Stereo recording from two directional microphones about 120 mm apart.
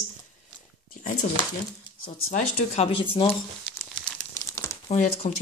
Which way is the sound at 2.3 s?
55° left (ahead or behind).